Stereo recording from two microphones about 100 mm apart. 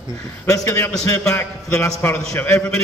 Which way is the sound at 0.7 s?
30° left (ahead or behind).